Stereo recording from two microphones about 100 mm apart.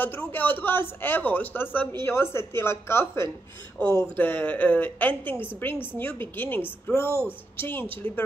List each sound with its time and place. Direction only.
0.0 s speech: 20° left (ahead or behind)